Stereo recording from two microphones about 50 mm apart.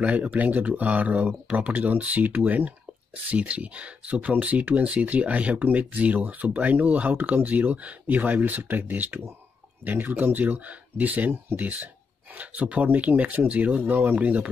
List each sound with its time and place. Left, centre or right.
0.0 s speech: right
11.4 s speech: right
12.4 s speech: right